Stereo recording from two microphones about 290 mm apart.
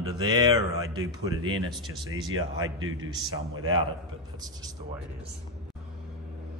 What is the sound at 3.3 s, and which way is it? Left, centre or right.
Speech, centre.